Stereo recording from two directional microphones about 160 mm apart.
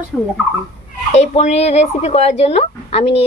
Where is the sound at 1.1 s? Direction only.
45° left (ahead or behind).